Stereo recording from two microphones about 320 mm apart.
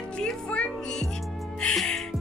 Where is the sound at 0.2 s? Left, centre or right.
Centre.